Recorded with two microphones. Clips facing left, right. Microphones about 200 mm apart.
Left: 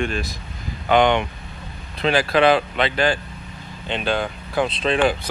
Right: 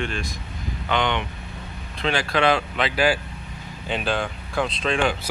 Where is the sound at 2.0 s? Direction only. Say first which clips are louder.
Left 5 dB; 40° left (ahead or behind).